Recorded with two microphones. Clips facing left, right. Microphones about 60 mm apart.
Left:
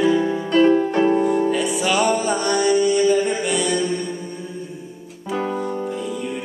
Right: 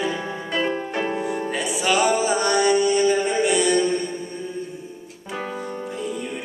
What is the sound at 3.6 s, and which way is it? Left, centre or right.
Music, right.